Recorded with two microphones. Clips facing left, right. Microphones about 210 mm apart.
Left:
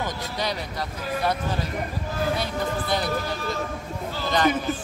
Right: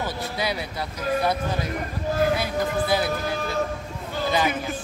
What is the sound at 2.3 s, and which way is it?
Speech, 5° right (ahead or behind).